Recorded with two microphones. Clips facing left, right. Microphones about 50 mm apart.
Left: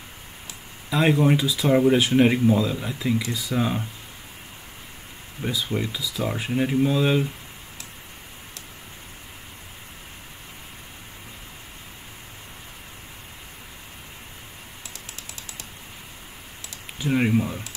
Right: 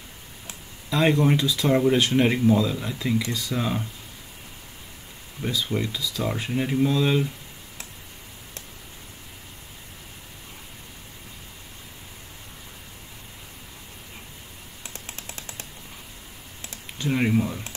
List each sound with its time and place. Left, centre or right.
0.8 s speech: centre
5.4 s speech: centre
15.0 s typing: right
17.0 s speech: centre